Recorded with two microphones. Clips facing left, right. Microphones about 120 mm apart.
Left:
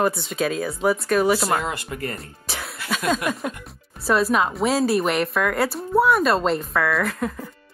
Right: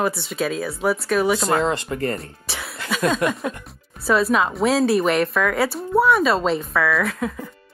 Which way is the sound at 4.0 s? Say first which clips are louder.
Right 1 dB; centre (ahead or behind).